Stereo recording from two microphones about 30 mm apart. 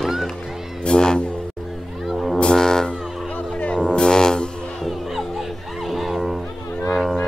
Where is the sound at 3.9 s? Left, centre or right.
Left.